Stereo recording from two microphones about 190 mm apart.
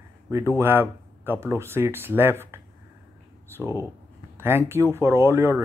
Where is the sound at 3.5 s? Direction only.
15° left (ahead or behind).